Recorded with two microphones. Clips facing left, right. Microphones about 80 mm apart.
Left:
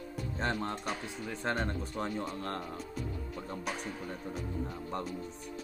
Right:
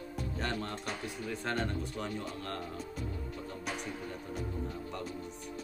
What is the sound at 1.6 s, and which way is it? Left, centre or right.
Speech, left.